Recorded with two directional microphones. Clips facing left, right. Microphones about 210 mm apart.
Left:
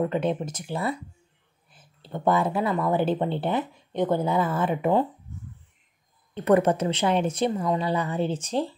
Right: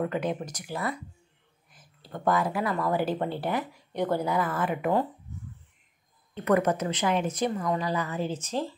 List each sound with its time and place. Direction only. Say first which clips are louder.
0.0 s speech: left 4 dB; 25° left (ahead or behind)
6.3 s speech: left 4 dB; 30° left (ahead or behind)